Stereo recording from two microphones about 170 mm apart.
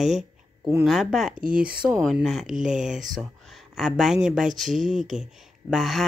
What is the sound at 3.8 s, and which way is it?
Speech, centre (ahead or behind).